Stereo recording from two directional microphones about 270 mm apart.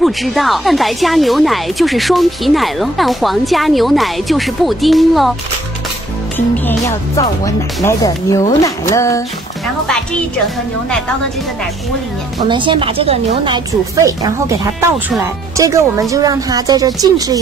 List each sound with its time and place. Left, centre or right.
0.0 s speech: centre
6.9 s speech: centre
12.4 s speech: centre
14.8 s speech: centre